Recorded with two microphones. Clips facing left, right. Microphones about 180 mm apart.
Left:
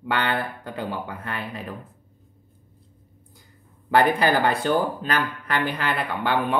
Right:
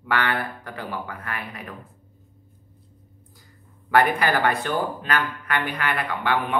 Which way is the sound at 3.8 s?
30° left (ahead or behind).